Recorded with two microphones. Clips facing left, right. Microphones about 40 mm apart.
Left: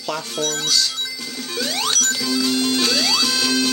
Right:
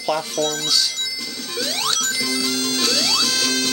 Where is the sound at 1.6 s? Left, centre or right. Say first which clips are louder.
Left 1 dB; centre.